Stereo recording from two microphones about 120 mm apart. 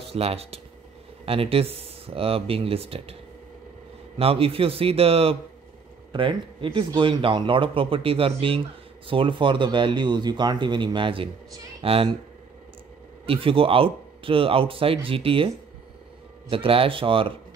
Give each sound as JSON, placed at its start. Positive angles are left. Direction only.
{"t": 0.1, "sound": "a man's voice", "side_deg": -55}
{"t": 4.2, "sound": "a man's voice", "side_deg": -55}
{"t": 13.2, "sound": "a man's voice", "side_deg": -50}